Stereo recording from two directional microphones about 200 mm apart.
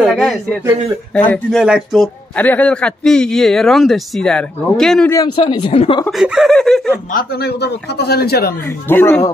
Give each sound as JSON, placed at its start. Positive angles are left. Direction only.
{"t": 0.0, "sound": "a man's voice", "side_deg": 0}
{"t": 5.1, "sound": "speech", "side_deg": 20}
{"t": 6.0, "sound": "a man's voice", "side_deg": 0}
{"t": 7.1, "sound": "a man's voice", "side_deg": 50}
{"t": 8.6, "sound": "speech", "side_deg": 10}